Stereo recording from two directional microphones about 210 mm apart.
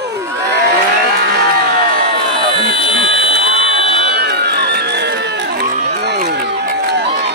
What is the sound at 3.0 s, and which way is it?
Buzzer, 50° right (ahead or behind).